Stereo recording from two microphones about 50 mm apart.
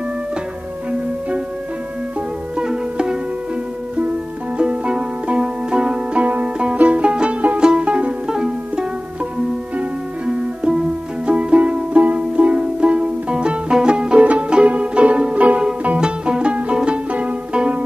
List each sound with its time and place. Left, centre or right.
2.5 s music: centre
4.6 s music: right